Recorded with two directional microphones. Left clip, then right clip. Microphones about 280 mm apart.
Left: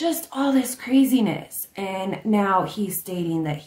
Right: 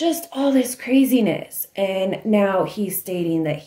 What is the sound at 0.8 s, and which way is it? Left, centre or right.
Speech, centre.